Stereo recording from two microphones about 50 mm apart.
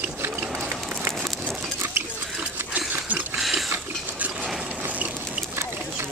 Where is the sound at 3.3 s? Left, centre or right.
Centre.